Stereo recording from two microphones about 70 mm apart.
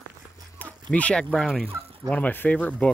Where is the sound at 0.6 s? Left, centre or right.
Left.